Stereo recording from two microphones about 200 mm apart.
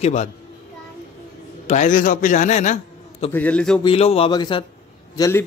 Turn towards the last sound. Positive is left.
turn(degrees=15)  # may be behind; listen again after turning